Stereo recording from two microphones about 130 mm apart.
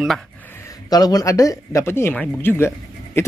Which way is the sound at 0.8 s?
30° left (ahead or behind).